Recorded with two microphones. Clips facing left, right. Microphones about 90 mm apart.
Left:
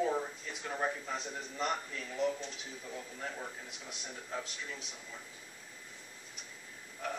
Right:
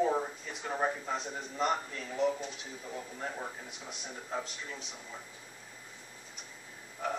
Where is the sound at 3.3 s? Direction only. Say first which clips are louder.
Right 3 dB; 15° right (ahead or behind).